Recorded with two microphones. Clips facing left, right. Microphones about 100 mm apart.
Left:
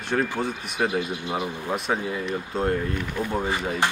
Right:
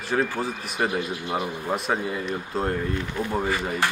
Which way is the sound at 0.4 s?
Centre (ahead or behind).